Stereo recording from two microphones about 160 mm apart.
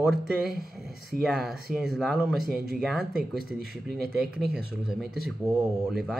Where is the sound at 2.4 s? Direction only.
70° right (ahead or behind).